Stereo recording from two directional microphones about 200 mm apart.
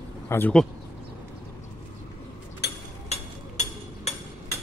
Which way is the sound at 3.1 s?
35° left (ahead or behind).